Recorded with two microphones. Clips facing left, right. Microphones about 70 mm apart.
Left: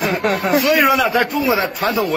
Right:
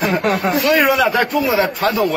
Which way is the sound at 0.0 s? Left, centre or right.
Centre.